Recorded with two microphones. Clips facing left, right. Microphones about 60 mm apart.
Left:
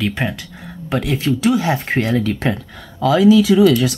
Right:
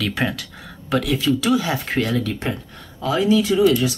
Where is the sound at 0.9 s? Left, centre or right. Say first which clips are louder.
Even; left.